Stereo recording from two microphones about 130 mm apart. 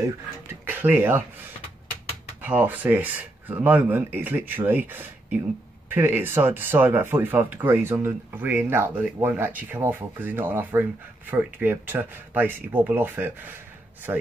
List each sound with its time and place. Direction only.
0.5 s speech: 15° right (ahead or behind)
2.4 s speech: 15° right (ahead or behind)